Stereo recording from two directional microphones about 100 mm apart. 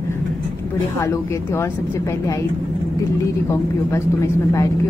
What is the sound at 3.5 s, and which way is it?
A woman's voice, 30° left (ahead or behind).